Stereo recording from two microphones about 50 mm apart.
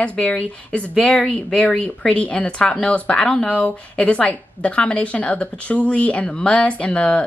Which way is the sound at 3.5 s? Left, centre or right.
Left.